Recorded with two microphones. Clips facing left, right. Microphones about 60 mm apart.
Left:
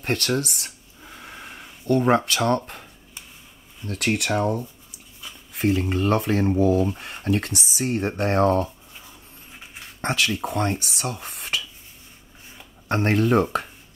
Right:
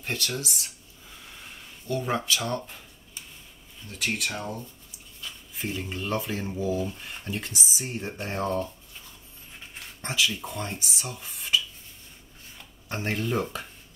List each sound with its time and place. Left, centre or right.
0.0 s a sound: left
3.8 s speech: left
10.0 s speech: left
12.8 s speech: left